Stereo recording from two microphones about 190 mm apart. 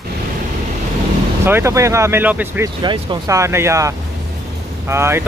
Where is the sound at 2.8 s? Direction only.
20° right (ahead or behind).